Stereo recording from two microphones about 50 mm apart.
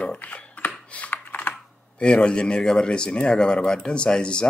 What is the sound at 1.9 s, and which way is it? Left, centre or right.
Speech, left.